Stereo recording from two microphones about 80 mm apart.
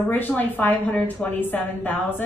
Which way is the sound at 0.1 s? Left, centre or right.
Left.